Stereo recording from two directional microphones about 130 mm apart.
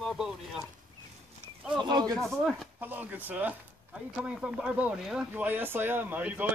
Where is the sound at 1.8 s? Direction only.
35° right (ahead or behind).